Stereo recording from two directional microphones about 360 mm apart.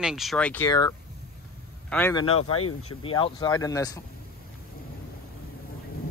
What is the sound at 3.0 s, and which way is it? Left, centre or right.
Speech, centre.